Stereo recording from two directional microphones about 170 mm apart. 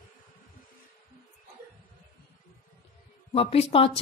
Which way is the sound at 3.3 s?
35° left (ahead or behind).